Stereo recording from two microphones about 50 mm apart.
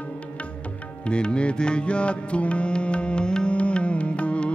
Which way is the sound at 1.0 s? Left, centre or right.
Centre.